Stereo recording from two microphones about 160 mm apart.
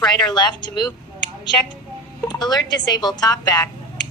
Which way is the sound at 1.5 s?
15° left (ahead or behind).